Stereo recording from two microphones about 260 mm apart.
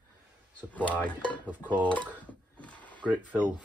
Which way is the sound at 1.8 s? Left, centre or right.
Centre.